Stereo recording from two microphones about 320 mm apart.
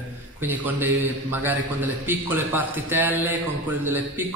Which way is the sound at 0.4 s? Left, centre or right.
Centre.